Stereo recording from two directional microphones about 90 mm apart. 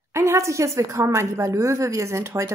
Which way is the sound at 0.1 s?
30° right (ahead or behind).